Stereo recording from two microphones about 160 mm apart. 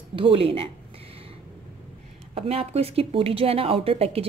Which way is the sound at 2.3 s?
40° right (ahead or behind).